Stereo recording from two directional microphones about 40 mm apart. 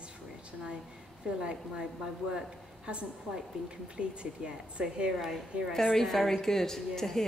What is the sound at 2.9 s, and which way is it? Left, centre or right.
A woman's voice, right.